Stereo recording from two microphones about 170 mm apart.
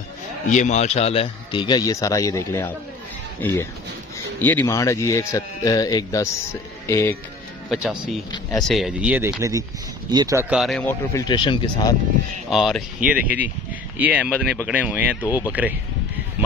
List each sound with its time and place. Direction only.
0.5 s a man's voice: 45° left (ahead or behind); by 7.2 s 15° left (ahead or behind)
7.7 s speech: 5° right (ahead or behind); by 10.4 s 20° right (ahead or behind)
10.5 s speech: centre (ahead or behind)
11.2 s speech: 30° left (ahead or behind)
12.4 s speech: centre (ahead or behind)
15.2 s speech: 20° left (ahead or behind)